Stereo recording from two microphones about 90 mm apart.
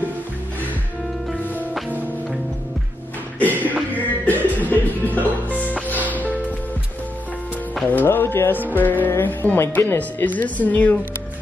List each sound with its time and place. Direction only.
3.3 s a sound: 20° left (ahead or behind)
4.3 s music: 20° left (ahead or behind)
7.8 s speech: 20° left (ahead or behind)